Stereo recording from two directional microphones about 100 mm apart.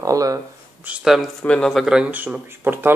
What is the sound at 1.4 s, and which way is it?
Speech, 10° left (ahead or behind).